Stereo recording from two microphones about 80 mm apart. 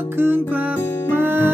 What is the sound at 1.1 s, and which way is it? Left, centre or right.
Music, right.